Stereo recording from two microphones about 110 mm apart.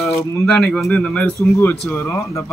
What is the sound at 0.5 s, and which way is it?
Speech, 5° left (ahead or behind).